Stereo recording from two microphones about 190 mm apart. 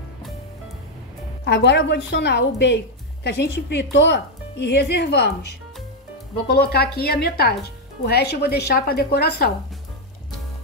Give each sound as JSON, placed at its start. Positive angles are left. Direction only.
{"t": 1.4, "sound": "a woman's voice", "side_deg": 65}